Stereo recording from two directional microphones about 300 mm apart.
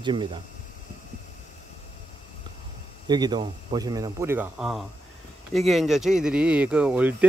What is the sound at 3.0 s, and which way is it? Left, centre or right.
Speech, centre.